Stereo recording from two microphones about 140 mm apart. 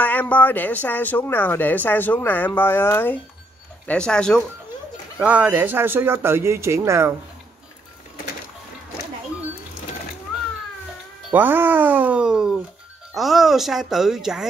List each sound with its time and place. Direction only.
0.0 s a woman's voice: 10° left (ahead or behind)
5.2 s speech: 10° right (ahead or behind)
11.3 s speech: 15° right (ahead or behind)